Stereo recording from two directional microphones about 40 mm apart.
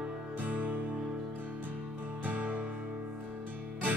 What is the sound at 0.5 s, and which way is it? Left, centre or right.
Music, right.